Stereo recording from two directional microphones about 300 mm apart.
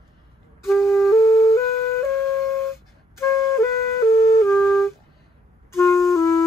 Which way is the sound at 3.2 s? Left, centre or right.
Centre.